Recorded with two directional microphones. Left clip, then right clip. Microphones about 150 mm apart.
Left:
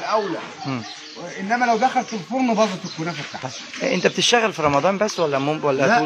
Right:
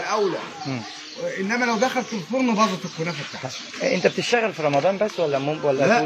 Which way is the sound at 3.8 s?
40° left (ahead or behind).